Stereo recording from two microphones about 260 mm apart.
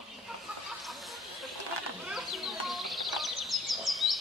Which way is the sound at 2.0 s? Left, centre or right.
Centre.